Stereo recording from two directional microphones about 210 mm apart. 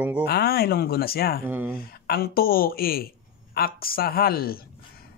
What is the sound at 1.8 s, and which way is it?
Speech, 45° left (ahead or behind).